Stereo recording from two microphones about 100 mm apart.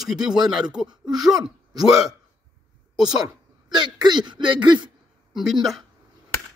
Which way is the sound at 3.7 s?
45° right (ahead or behind).